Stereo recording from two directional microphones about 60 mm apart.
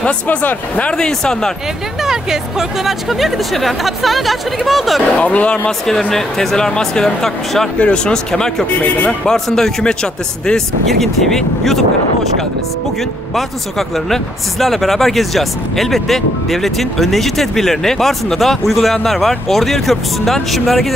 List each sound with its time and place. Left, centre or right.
0.0 s speech: left
0.9 s speech: centre
2.0 s speech: centre
5.1 s speech: left
5.7 s speech: centre
7.8 s speech: centre
8.6 s speech: left
9.2 s speech: centre
13.3 s speech: centre